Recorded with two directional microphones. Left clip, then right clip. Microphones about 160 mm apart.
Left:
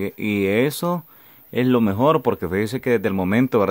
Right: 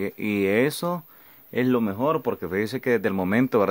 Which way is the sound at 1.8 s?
20° left (ahead or behind).